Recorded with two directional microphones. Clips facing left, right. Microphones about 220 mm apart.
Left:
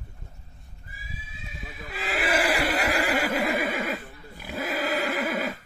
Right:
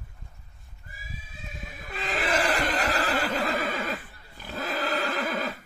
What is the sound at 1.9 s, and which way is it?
Neigh, 5° left (ahead or behind).